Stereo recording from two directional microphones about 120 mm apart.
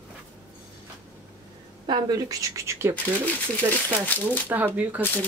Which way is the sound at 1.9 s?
40° right (ahead or behind).